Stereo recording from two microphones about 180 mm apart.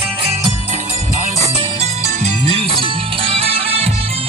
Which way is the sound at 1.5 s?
30° right (ahead or behind).